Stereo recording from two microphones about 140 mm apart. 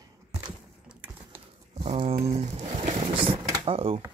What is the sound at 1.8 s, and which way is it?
Speech, 45° right (ahead or behind).